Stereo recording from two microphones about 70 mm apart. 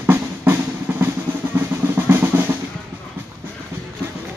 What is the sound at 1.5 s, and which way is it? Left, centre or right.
Drum roll, right.